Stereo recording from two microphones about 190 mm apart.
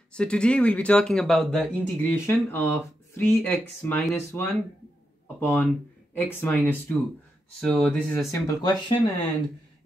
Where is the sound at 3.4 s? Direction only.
10° left (ahead or behind).